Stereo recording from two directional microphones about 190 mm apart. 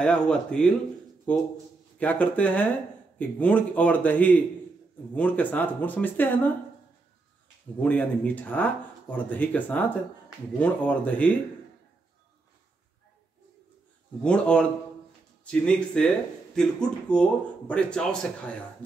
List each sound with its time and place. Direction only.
0.0 s speech: 5° left (ahead or behind)
7.8 s speech: 10° left (ahead or behind)
14.2 s speech: 5° left (ahead or behind)